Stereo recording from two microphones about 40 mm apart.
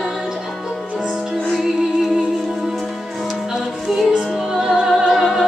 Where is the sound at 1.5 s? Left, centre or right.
Centre.